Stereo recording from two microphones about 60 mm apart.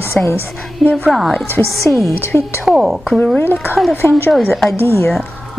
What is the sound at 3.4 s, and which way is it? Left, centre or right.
A woman's voice, left.